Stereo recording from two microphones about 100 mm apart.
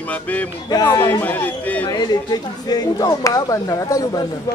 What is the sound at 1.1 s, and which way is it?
Speech, 20° left (ahead or behind).